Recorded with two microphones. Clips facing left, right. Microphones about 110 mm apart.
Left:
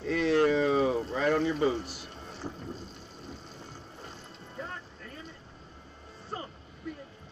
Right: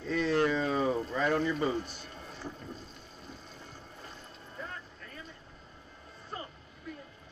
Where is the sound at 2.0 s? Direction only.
30° left (ahead or behind).